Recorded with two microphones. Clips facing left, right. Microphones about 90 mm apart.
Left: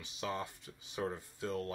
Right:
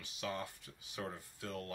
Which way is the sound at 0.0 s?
25° left (ahead or behind).